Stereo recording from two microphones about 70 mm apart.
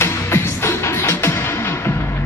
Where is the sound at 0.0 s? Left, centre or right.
Left.